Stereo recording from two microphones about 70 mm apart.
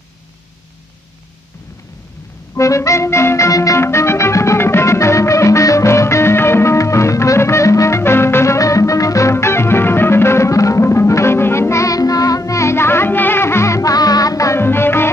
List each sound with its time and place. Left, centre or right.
2.5 s music: left
8.5 s music: left
13.9 s music: left
14.6 s music: left